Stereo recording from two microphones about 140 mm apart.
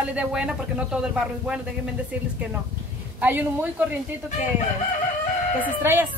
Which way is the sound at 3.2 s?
10° right (ahead or behind).